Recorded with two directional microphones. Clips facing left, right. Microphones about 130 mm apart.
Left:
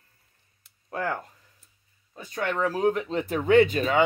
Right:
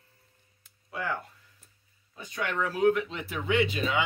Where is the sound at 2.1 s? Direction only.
40° left (ahead or behind).